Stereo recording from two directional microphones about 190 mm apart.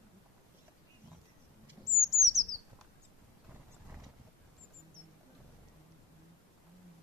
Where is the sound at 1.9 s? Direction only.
20° right (ahead or behind).